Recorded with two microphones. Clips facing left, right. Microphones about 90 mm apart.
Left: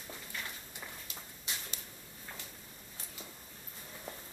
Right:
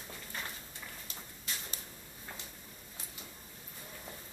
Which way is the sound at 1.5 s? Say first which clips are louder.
Even; 20° left (ahead or behind).